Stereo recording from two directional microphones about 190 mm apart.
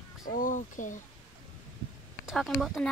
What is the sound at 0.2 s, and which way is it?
Speech, 45° left (ahead or behind).